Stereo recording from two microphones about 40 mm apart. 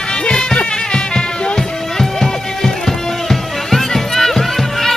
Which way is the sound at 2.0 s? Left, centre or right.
Centre.